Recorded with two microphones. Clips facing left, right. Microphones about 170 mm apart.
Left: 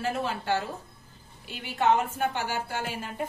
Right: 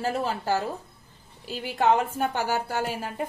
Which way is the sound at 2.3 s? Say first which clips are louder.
Right 4 dB; 40° right (ahead or behind).